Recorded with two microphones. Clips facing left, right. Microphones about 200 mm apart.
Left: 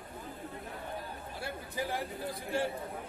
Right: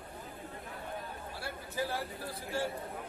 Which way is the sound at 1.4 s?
15° left (ahead or behind).